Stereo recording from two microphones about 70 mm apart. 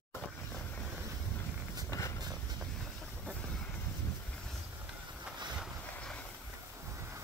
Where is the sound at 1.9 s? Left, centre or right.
Left.